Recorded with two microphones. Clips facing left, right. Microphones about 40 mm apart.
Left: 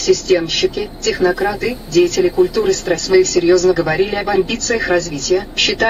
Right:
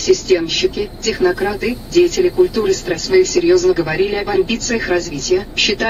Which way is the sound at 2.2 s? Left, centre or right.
Centre.